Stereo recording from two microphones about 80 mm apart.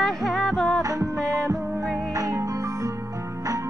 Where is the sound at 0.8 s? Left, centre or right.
Right.